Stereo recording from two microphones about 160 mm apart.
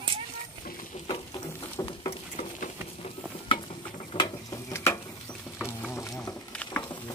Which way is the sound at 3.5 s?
35° left (ahead or behind).